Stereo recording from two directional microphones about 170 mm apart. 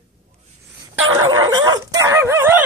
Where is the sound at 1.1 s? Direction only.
25° right (ahead or behind).